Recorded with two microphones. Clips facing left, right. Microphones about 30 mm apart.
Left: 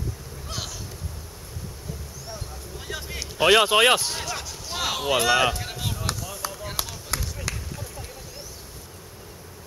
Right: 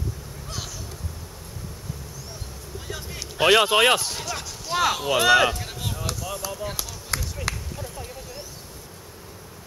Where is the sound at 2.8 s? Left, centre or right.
Centre.